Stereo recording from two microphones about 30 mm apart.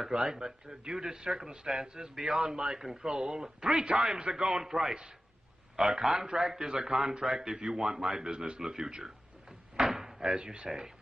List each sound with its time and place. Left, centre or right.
0.1 s a man's voice: right